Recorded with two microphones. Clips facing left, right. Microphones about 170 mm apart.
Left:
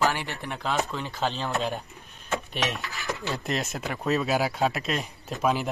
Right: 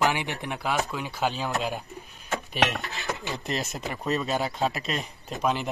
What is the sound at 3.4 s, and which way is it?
Speech, centre (ahead or behind).